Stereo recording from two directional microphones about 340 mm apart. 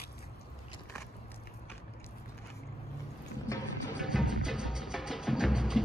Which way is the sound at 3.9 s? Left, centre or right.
Centre.